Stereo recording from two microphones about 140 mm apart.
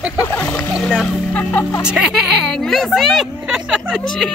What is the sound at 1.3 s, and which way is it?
Speech, 10° left (ahead or behind).